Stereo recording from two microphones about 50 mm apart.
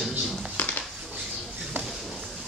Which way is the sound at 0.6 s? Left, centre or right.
Left.